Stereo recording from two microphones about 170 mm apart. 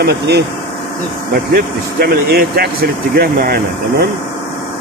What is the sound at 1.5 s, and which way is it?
Speech, 65° right (ahead or behind).